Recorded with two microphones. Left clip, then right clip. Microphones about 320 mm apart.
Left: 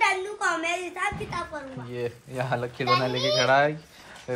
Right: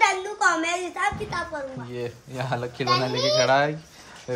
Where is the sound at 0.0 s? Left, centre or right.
Right.